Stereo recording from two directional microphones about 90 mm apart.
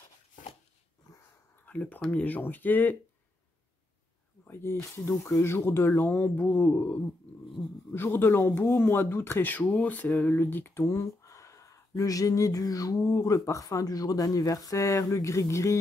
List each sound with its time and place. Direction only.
1.7 s speech: 15° left (ahead or behind)
4.5 s a man's voice: 25° left (ahead or behind)